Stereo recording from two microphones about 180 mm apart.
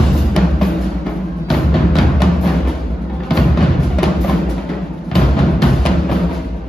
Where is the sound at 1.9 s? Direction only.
Centre (ahead or behind).